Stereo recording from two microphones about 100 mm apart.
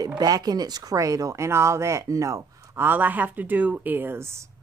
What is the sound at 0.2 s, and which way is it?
Speech, 40° right (ahead or behind).